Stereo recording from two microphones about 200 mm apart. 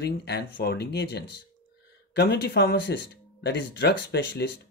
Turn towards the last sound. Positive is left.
turn(degrees=55)  # may be behind; listen again after turning